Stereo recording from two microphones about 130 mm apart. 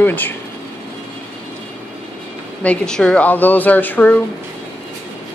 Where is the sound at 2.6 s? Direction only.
5° left (ahead or behind).